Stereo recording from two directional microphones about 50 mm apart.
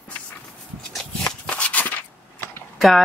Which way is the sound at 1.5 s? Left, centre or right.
Left.